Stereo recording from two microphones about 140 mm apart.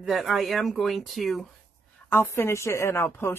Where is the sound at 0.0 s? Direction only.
Centre (ahead or behind).